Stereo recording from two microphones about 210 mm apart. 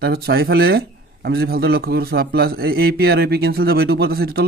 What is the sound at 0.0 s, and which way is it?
Speech, 50° right (ahead or behind).